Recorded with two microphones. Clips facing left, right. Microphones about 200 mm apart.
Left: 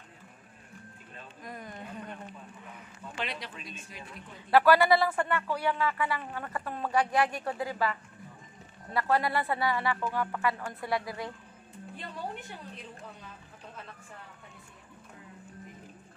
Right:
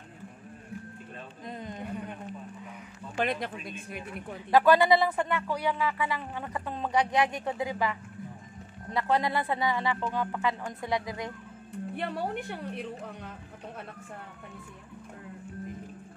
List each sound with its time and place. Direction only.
1.4 s a sound: 20° right (ahead or behind)
3.2 s speech: 50° right (ahead or behind)
4.5 s speech: 15° right (ahead or behind)
9.1 s speech: 20° right (ahead or behind)
11.9 s speech: 65° right (ahead or behind)